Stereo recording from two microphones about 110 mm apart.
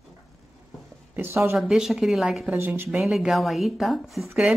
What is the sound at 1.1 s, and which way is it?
Speech, 20° right (ahead or behind).